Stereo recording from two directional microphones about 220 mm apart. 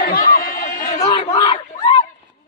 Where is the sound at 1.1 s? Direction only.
20° left (ahead or behind).